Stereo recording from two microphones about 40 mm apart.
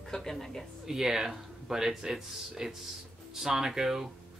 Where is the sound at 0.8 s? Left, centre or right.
Centre.